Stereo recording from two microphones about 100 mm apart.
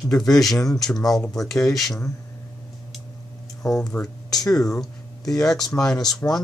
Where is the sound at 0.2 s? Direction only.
5° left (ahead or behind).